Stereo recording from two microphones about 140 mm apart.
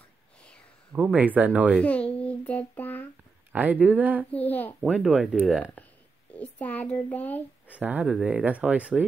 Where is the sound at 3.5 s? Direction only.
10° right (ahead or behind).